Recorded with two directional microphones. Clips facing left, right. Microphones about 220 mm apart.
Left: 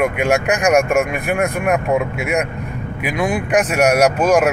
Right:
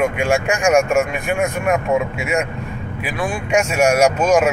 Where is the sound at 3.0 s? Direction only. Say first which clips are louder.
Left 4 dB; 15° left (ahead or behind).